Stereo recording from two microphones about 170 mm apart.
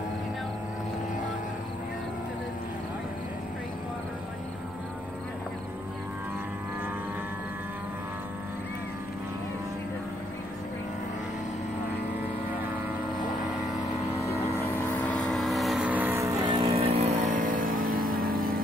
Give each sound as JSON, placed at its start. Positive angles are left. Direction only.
{"t": 14.9, "sound": "vehicle", "side_deg": 5}